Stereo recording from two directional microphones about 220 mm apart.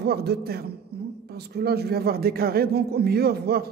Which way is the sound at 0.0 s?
45° right (ahead or behind).